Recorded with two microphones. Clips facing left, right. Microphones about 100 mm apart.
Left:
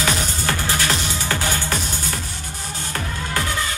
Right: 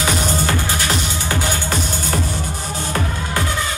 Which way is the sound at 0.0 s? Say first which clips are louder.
Right 3 dB; 15° right (ahead or behind).